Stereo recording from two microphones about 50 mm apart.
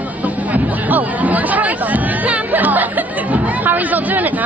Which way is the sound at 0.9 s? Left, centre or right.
Right.